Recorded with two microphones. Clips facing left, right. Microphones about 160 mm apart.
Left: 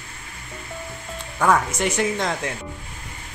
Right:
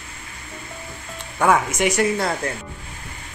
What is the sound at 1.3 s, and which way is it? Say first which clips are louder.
Speech: right 1 dB; 10° right (ahead or behind).